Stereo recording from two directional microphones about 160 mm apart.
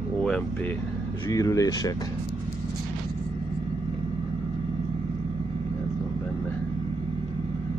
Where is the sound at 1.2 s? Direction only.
20° left (ahead or behind).